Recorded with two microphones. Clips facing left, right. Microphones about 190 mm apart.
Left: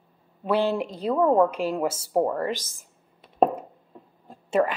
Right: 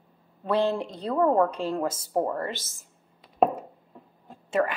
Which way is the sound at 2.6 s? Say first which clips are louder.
Left 1 dB; 90° left.